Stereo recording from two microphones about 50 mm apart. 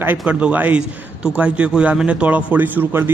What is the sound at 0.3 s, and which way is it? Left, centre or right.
A man's voice, right.